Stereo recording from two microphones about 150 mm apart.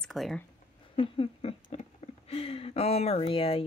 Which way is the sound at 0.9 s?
35° left (ahead or behind).